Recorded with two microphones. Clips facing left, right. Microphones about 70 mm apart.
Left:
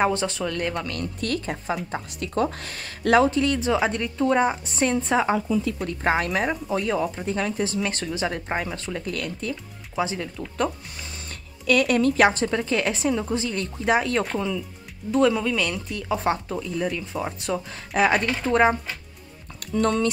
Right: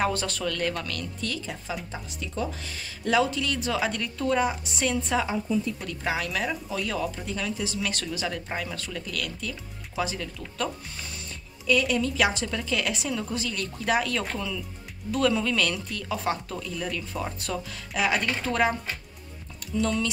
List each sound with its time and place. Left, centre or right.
0.0 s speech: left
1.0 s speech: left
3.3 s speech: left
11.2 s speech: left; by 17.6 s centre
17.6 s speech: left
18.2 s speech: left
19.7 s speech: left